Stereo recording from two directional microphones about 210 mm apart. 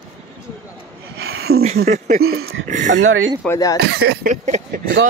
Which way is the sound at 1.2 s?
80° right.